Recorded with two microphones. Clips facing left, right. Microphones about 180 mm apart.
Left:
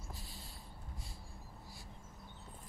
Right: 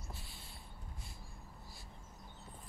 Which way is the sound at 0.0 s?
40° left (ahead or behind).